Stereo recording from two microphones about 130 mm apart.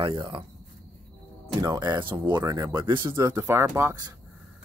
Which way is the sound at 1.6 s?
30° right (ahead or behind).